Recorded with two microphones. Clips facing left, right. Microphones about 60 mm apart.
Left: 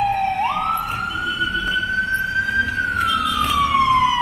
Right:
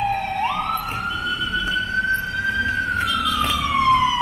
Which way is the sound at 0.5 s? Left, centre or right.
Centre.